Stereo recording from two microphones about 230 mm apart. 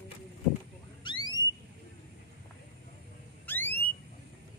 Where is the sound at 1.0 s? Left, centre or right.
Left.